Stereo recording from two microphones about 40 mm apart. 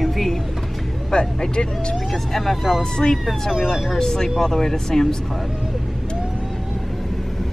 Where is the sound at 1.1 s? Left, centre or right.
Left.